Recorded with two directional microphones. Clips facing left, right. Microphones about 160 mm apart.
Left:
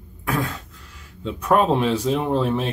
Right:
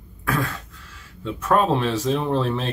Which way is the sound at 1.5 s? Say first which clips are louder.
Left 2 dB; 15° left (ahead or behind).